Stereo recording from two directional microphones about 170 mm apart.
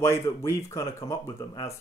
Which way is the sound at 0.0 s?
15° left (ahead or behind).